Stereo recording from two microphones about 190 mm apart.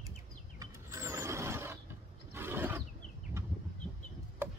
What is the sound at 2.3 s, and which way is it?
Roar, 10° right (ahead or behind).